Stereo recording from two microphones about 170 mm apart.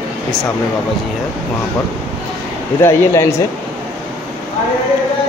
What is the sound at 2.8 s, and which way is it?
Speech, 15° left (ahead or behind).